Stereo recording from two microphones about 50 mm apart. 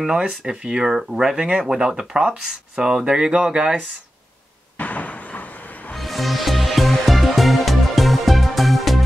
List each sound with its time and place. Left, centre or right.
0.2 s speech: right
4.7 s a sound: left
5.9 s music: centre